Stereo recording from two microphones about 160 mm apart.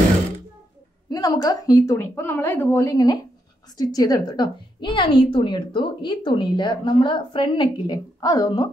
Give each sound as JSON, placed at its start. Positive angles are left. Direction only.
{"t": 1.1, "sound": "a woman's voice", "side_deg": 25}